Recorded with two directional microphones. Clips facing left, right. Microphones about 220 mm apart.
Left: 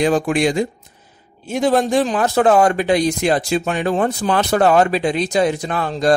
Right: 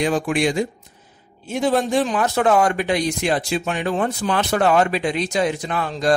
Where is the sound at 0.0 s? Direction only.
40° left (ahead or behind).